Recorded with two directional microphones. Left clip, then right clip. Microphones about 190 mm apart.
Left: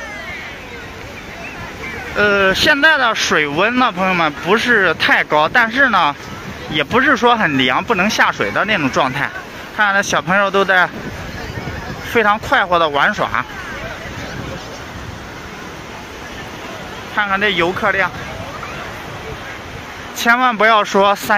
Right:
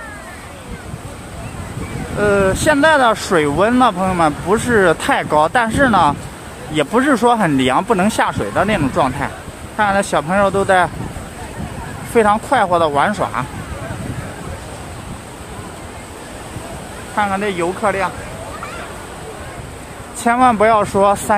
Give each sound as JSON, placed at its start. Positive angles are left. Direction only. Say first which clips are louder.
{"t": 2.1, "sound": "speech", "louder": "left 2 dB", "side_deg": -5}
{"t": 12.1, "sound": "speech", "louder": "even", "side_deg": -10}
{"t": 17.1, "sound": "speech", "louder": "left 2 dB", "side_deg": -5}
{"t": 20.2, "sound": "speech", "louder": "even", "side_deg": -5}